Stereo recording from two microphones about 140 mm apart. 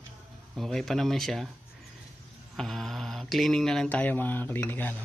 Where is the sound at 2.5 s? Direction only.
Centre (ahead or behind).